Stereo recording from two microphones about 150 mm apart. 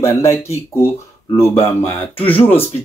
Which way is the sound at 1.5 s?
10° left (ahead or behind).